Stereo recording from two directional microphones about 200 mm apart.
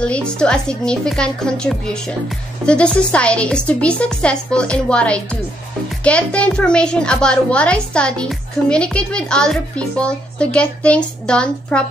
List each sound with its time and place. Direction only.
0.0 s a child's voice: 5° left (ahead or behind)